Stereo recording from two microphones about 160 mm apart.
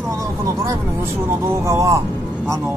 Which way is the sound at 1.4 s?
20° right (ahead or behind).